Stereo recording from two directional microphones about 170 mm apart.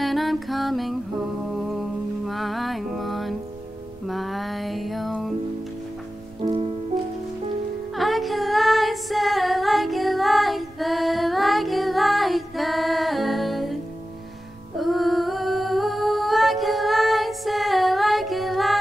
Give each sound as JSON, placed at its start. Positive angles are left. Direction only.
{"t": 0.0, "sound": "music", "side_deg": 0}
{"t": 6.4, "sound": "music", "side_deg": -35}
{"t": 7.9, "sound": "music", "side_deg": 0}
{"t": 14.8, "sound": "music", "side_deg": 0}